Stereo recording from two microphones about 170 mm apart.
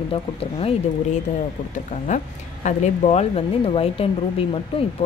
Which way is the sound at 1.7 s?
45° left (ahead or behind).